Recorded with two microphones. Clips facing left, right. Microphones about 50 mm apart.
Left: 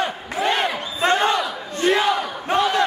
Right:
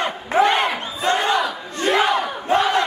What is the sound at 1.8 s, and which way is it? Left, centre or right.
Battle cry, right.